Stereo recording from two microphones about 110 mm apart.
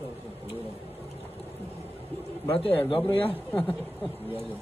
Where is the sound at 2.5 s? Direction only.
55° left (ahead or behind).